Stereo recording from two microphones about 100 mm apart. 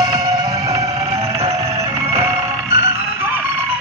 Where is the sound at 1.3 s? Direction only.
90° right.